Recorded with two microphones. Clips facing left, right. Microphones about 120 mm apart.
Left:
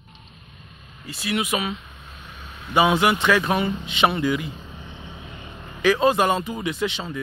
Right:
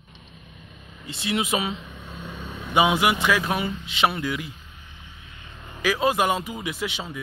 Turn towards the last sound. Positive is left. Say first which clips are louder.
# left 4 dB
turn(degrees=-10)  # may be behind; listen again after turning